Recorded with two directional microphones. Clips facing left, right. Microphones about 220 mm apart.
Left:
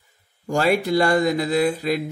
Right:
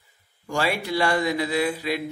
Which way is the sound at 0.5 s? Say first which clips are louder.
Left 6 dB; 45° left (ahead or behind).